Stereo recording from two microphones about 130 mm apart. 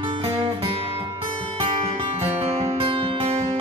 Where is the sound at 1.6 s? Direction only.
40° right (ahead or behind).